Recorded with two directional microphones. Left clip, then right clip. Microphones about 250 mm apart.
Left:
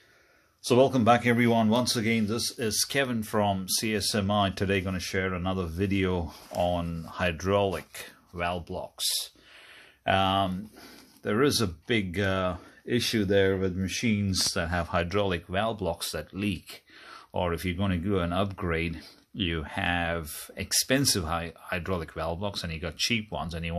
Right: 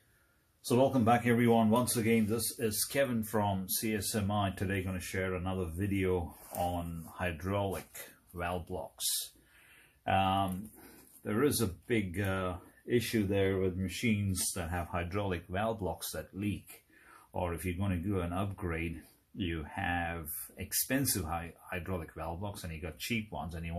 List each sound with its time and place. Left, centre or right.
0.7 s speech: left
10.0 s speech: left
17.3 s speech: left